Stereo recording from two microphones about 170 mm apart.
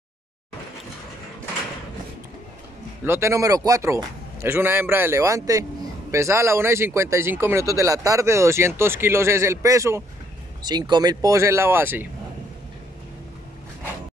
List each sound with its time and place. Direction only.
3.1 s speech: 15° right (ahead or behind)